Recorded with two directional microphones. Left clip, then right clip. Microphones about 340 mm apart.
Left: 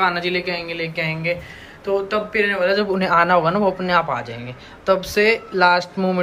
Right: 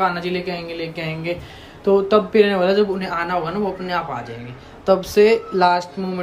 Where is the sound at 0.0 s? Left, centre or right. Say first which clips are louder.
Left 1 dB; centre.